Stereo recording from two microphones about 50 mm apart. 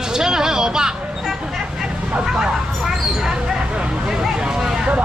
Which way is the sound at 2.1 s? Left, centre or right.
Centre.